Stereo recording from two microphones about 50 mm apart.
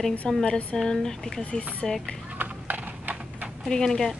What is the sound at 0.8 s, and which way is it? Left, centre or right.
Speech, centre.